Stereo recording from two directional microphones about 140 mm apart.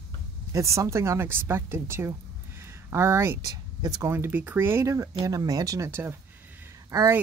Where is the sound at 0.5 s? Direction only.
20° right (ahead or behind).